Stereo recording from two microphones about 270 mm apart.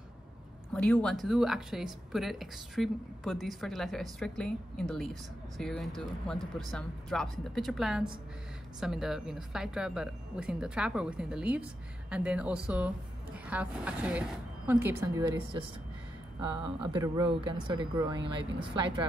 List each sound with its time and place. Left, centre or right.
0.7 s speech: centre